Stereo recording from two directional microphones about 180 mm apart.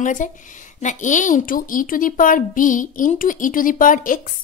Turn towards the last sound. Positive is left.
turn(degrees=50)  # may be behind; listen again after turning